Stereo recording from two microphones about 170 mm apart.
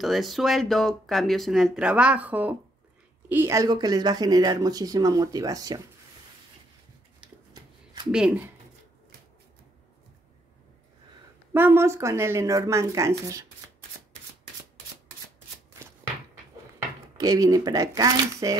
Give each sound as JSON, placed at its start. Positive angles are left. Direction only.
{"t": 0.0, "sound": "speech", "side_deg": 0}
{"t": 11.5, "sound": "speech", "side_deg": -10}
{"t": 17.2, "sound": "speech", "side_deg": -20}